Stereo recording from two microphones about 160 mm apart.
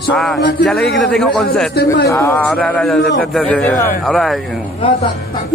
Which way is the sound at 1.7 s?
85° left.